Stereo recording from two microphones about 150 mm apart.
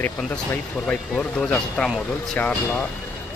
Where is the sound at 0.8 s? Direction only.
5° left (ahead or behind).